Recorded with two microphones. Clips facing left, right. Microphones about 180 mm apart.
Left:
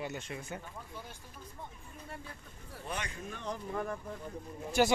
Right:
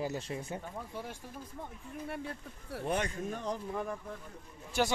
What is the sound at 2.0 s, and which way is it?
Speech, 70° right (ahead or behind).